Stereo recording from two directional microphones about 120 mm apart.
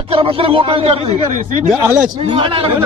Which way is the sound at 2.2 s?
45° right (ahead or behind).